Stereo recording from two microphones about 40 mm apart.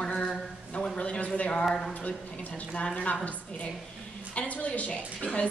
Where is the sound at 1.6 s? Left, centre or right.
Centre.